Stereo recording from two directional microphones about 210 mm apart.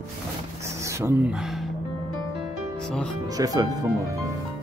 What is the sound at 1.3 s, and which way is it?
Speech, centre (ahead or behind).